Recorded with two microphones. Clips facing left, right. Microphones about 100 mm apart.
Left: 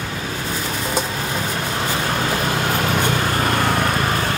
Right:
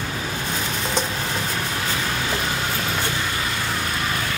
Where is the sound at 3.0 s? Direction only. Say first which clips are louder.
Left 6 dB; 55° left (ahead or behind).